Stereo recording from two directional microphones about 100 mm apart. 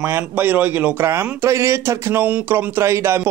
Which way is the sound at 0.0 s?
20° right (ahead or behind).